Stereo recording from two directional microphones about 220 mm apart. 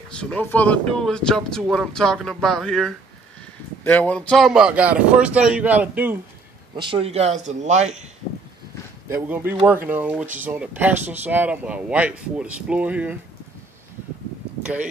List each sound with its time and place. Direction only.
0.2 s speech: 5° left (ahead or behind)
6.8 s speech: 25° right (ahead or behind)
9.1 s speech: 10° right (ahead or behind)
14.6 s a sound: 5° right (ahead or behind)